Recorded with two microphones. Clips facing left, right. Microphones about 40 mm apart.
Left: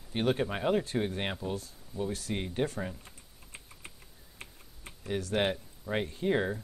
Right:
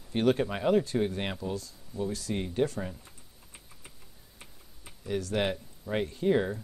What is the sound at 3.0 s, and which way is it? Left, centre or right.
Typing, left.